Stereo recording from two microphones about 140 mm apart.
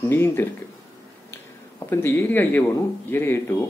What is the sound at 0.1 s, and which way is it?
Speech, 15° left (ahead or behind).